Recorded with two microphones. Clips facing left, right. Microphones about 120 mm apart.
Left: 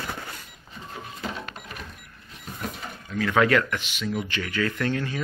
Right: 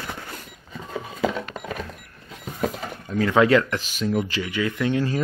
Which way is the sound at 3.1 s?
25° right (ahead or behind).